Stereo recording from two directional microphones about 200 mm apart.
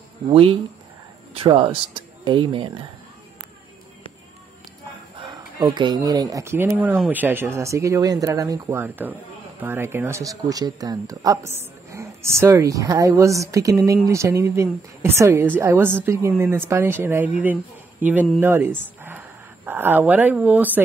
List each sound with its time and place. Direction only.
0.3 s speech: 25° right (ahead or behind)
5.2 s speech: 20° right (ahead or behind)
19.0 s a sound: 10° right (ahead or behind)